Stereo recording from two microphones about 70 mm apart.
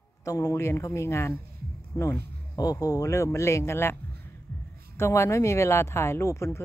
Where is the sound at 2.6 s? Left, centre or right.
Left.